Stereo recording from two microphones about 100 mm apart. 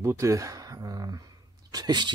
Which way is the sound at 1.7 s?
45° right (ahead or behind).